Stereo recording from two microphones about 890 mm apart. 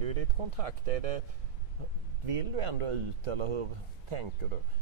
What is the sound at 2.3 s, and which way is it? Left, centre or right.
Speech, right.